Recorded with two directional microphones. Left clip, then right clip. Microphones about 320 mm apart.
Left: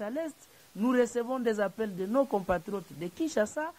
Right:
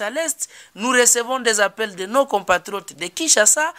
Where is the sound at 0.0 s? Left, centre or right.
Centre.